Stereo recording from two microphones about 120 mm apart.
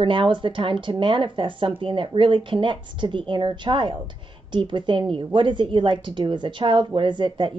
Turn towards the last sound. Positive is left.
turn(degrees=-40)  # may be behind; listen again after turning